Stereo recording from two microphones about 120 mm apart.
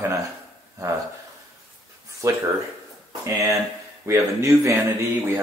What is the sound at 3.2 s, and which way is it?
Speech, 25° right (ahead or behind).